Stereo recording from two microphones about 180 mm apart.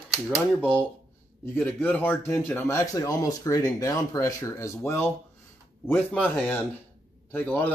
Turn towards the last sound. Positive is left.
turn(degrees=10)  # may be behind; listen again after turning